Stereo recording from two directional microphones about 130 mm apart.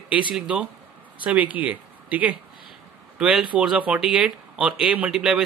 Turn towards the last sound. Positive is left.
turn(degrees=-5)  # may be behind; listen again after turning